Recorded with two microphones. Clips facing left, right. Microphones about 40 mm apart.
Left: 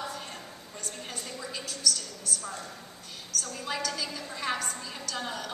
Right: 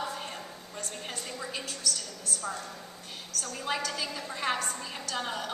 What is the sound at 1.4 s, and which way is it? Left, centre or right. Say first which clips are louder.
Speech: left 4 dB; centre.